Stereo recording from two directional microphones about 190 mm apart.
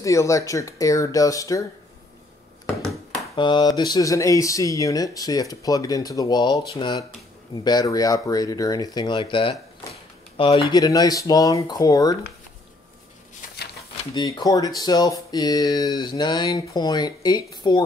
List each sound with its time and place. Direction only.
0.0 s speech: 15° left (ahead or behind)
3.3 s speech: 25° left (ahead or behind)
14.1 s speech: 20° left (ahead or behind)